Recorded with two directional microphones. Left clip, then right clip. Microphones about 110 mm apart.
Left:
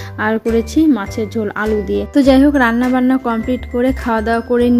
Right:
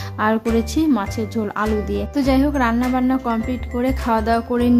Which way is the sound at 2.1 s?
45° left (ahead or behind).